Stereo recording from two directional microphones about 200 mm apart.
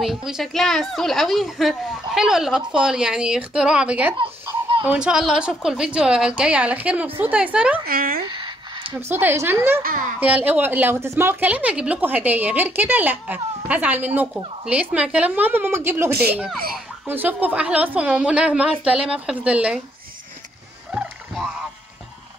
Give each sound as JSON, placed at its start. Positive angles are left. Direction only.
{"t": 0.0, "sound": "a woman's voice", "side_deg": 0}
{"t": 7.8, "sound": "speech", "side_deg": -45}
{"t": 8.3, "sound": "a sound", "side_deg": -25}
{"t": 9.1, "sound": "a woman's voice", "side_deg": -10}
{"t": 16.1, "sound": "speech", "side_deg": -50}
{"t": 17.0, "sound": "a woman's voice", "side_deg": -10}
{"t": 20.9, "sound": "a sound", "side_deg": -5}